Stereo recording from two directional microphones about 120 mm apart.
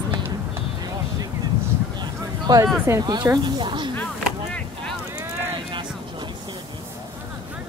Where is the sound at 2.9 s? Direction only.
20° right (ahead or behind).